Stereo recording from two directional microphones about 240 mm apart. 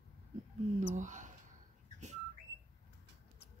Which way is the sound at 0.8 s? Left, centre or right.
Right.